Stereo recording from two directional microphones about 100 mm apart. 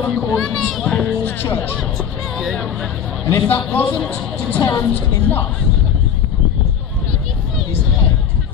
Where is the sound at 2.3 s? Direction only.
Centre (ahead or behind).